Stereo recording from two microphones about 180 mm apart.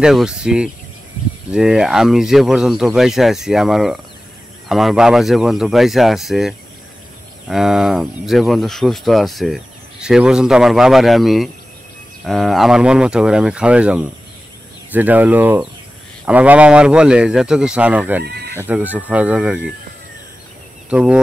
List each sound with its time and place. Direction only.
0.0 s speech: 5° right (ahead or behind)
18.2 s speech: 65° right (ahead or behind)
18.6 s speech: 10° right (ahead or behind)
20.9 s speech: 5° right (ahead or behind)